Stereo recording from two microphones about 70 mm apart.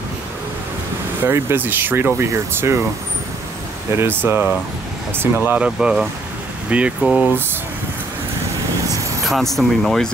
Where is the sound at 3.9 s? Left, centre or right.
Right.